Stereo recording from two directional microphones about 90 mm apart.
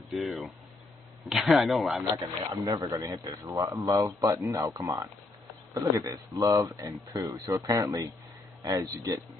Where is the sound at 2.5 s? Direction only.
45° right (ahead or behind).